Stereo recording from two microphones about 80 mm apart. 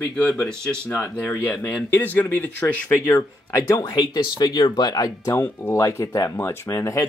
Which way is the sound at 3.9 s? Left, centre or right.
Left.